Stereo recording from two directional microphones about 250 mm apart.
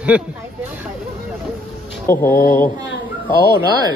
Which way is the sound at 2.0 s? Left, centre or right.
Centre.